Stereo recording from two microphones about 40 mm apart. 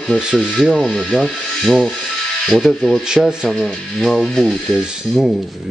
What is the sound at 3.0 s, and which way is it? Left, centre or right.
Speech, centre.